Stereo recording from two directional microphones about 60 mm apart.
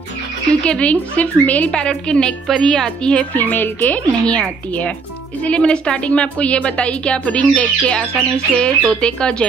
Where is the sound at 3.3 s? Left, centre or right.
Left.